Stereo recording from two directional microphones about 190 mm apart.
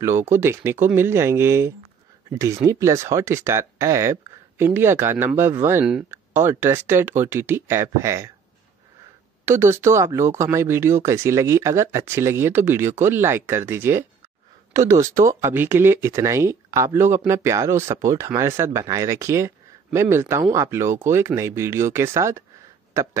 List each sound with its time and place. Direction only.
0.0 s speech: 15° right (ahead or behind)
9.4 s speech: 15° right (ahead or behind)